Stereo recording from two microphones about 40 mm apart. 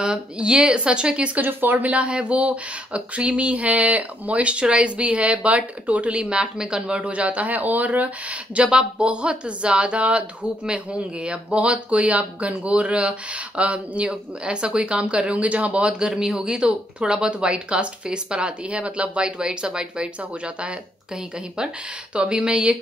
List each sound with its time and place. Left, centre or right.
0.0 s speech: right
1.4 s speech: right
8.6 s speech: right
16.0 s speech: centre
22.1 s speech: right